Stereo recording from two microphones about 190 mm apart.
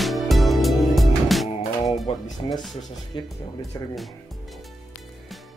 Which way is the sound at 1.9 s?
20° left (ahead or behind).